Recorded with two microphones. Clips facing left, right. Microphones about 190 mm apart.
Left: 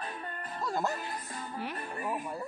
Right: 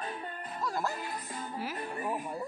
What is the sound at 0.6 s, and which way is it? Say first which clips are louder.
Music: left 2 dB; 25° left (ahead or behind).